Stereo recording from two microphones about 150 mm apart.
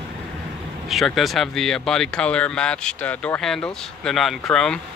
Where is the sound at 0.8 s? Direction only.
Centre (ahead or behind).